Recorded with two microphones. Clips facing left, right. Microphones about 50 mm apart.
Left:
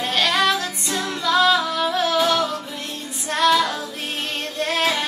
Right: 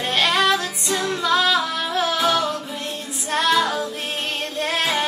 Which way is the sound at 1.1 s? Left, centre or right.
Centre.